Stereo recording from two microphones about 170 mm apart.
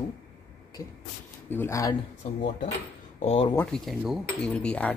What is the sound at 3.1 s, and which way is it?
Speech, 40° left (ahead or behind).